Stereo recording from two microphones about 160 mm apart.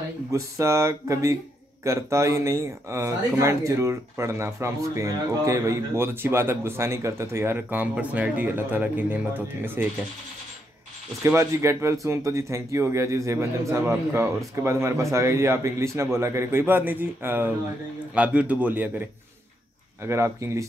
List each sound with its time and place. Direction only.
0.3 s speech: 20° right (ahead or behind)
11.2 s speech: 15° right (ahead or behind)
20.1 s speech: 15° right (ahead or behind)